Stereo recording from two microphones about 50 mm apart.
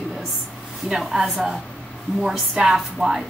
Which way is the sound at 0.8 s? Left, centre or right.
Centre.